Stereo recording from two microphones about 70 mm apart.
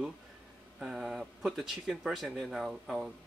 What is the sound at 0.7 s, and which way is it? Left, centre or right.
Speech, centre.